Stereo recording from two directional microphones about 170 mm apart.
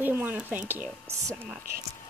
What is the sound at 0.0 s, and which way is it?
Speech, 10° right (ahead or behind).